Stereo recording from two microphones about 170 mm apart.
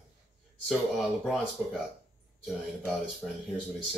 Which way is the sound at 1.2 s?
Centre (ahead or behind).